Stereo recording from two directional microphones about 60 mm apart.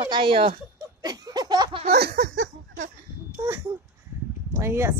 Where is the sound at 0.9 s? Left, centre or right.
Right.